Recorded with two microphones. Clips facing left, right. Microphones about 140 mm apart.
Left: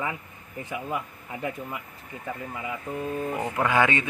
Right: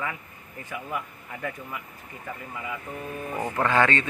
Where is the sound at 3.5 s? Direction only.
10° left (ahead or behind).